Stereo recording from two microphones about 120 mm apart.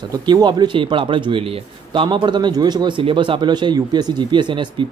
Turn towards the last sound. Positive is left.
turn(degrees=-40)  # may be behind; listen again after turning